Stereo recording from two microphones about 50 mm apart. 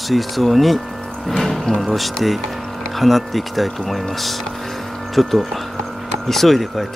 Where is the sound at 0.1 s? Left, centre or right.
Centre.